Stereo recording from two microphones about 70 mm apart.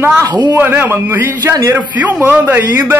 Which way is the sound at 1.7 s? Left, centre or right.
Right.